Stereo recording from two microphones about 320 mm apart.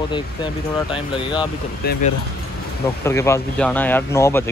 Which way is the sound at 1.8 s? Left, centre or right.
Left.